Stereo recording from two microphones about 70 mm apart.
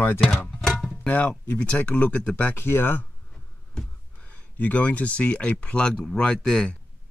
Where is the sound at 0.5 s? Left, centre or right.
Centre.